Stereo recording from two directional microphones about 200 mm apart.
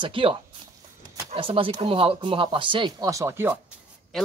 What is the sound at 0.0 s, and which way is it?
Speech, 25° right (ahead or behind).